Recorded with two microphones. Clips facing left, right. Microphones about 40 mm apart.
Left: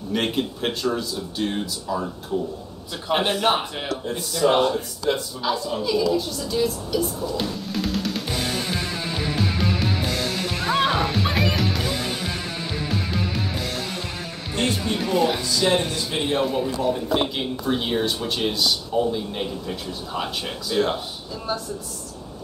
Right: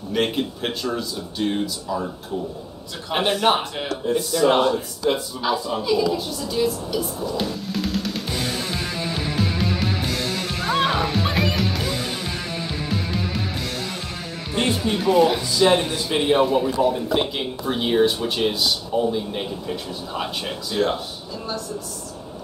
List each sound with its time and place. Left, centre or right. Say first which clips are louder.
0.1 s a man's voice: right 2 dB; centre
9.1 s music: left 1 dB; centre
14.5 s speech: right 2 dB; centre
15.6 s a man's voice: right 4 dB; centre
16.4 s a man's voice: right 3 dB; centre